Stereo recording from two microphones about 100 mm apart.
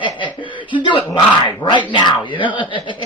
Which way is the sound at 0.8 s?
45° left (ahead or behind).